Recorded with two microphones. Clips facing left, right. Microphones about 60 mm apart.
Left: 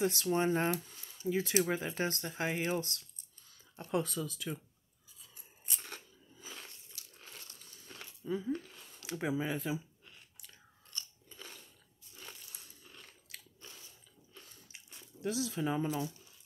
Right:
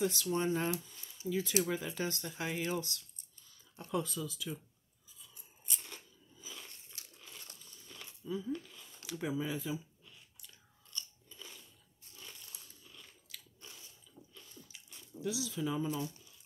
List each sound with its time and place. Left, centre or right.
0.0 s speech: left
3.9 s speech: left
5.3 s crunch: left
7.0 s crumpling: right
8.0 s a sound: left
9.4 s biting: left
13.0 s chewing: left
14.3 s bathtub: left
14.9 s speech: left